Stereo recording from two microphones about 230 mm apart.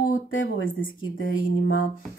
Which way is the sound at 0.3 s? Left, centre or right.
Left.